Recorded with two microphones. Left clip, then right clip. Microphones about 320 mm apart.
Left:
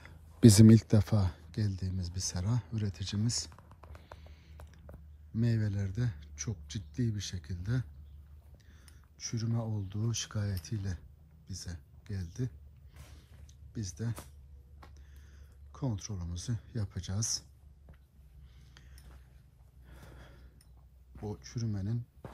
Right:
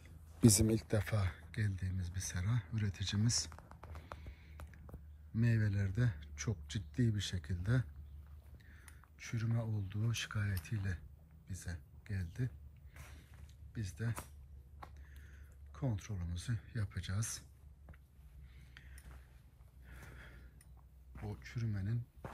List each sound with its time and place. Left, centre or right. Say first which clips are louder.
0.5 s speech: left 10 dB; left
1.0 s speech: left 5 dB; centre
4.2 s music: left 1 dB; centre
5.3 s a man's voice: left 3 dB; centre
13.7 s a man's voice: left 3 dB; centre
15.7 s speech: left 4 dB; centre
19.9 s sniff: even; centre
21.1 s speech: left 6 dB; centre